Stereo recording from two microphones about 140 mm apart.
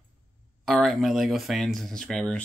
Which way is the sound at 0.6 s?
Centre (ahead or behind).